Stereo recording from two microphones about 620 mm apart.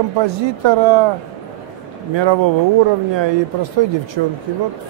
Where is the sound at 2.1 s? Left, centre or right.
Right.